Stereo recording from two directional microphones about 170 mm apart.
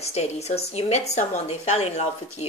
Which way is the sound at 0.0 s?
40° left (ahead or behind).